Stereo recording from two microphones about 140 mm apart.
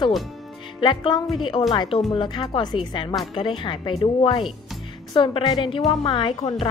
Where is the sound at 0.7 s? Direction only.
35° left (ahead or behind).